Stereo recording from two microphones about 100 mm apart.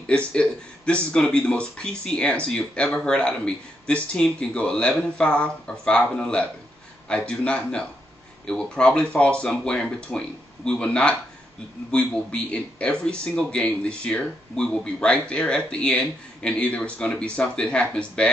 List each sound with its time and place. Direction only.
0.3 s speech: 10° left (ahead or behind)